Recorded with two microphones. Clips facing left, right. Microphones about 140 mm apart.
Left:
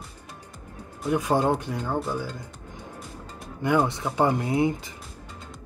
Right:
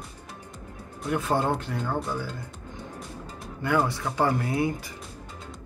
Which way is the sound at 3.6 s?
20° left (ahead or behind).